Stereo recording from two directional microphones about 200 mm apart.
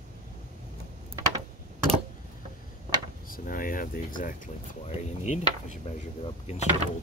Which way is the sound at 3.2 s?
45° left (ahead or behind).